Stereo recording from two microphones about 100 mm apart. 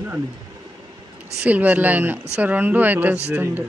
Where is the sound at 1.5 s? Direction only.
15° right (ahead or behind).